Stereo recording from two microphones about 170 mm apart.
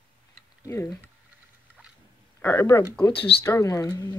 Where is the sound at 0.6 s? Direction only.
15° left (ahead or behind).